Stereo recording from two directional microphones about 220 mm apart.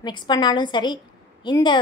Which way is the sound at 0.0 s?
20° left (ahead or behind).